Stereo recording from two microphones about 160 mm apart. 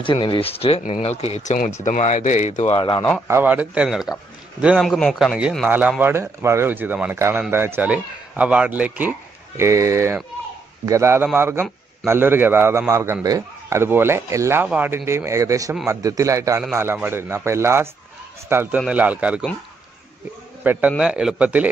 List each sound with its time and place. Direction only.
0.0 s speech: 30° left (ahead or behind)
2.8 s speech: 35° left (ahead or behind)
3.3 s a man's voice: 10° right (ahead or behind)
5.7 s a man's voice: 10° right (ahead or behind)
20.6 s a man's voice: 10° right (ahead or behind)